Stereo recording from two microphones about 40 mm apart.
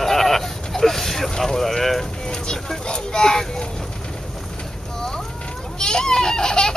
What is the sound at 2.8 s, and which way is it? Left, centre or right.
A child's voice, centre.